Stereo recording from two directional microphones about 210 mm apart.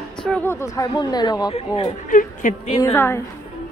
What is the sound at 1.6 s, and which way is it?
Speech, 30° left (ahead or behind).